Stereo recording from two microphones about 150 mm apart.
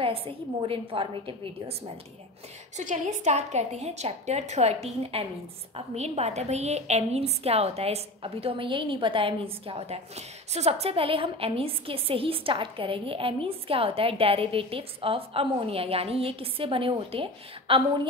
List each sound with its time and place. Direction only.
0.0 s a woman's voice: 40° right (ahead or behind)
2.8 s a woman's voice: 55° right (ahead or behind); by 18.0 s 35° right (ahead or behind)